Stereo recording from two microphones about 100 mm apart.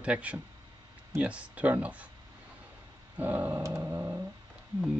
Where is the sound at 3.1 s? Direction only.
20° right (ahead or behind).